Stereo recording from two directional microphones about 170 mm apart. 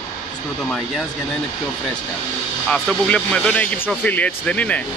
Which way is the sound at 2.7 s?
5° left (ahead or behind).